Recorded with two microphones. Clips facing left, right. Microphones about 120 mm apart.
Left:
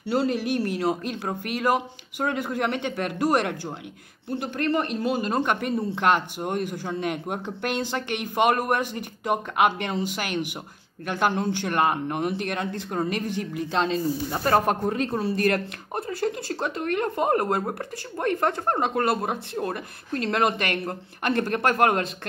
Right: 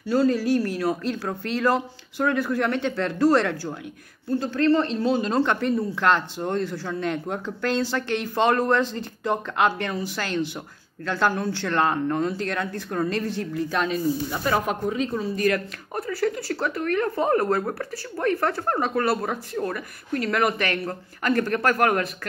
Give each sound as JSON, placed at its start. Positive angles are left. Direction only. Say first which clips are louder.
{"t": 0.0, "sound": "speech", "louder": "right 3 dB", "side_deg": 25}
{"t": 14.4, "sound": "speech", "louder": "left 4 dB", "side_deg": 50}
{"t": 15.9, "sound": "speech", "louder": "right 2 dB", "side_deg": 25}